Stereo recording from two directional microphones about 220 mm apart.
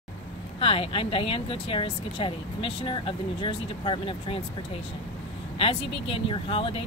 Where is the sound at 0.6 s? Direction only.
25° left (ahead or behind).